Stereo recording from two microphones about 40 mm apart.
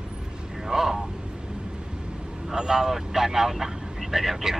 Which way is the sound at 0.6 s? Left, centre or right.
Centre.